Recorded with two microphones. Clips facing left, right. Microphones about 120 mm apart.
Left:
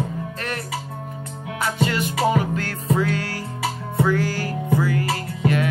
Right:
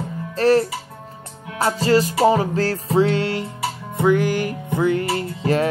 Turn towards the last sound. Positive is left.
turn(degrees=-30)  # may be behind; listen again after turning